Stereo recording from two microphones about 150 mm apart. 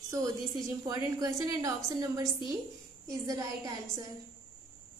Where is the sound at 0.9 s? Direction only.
25° right (ahead or behind).